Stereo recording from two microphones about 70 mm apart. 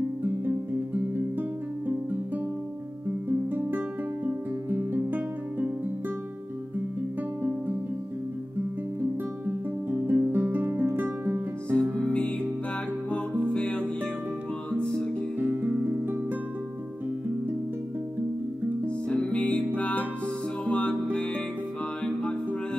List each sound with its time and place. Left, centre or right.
0.2 s music: right
3.3 s music: right
9.5 s music: right
11.7 s music: centre
15.3 s music: right
18.9 s music: centre